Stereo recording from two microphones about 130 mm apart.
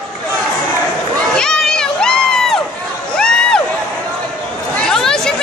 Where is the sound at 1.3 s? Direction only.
5° left (ahead or behind).